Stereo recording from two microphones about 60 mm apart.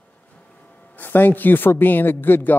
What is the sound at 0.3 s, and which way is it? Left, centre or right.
A man's voice, centre.